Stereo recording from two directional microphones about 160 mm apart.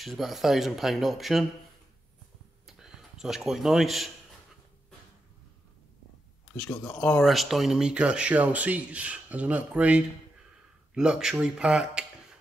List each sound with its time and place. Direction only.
0.0 s speech: centre (ahead or behind)
2.6 s a sound: centre (ahead or behind)
6.7 s speech: 15° left (ahead or behind); by 12.4 s 5° right (ahead or behind)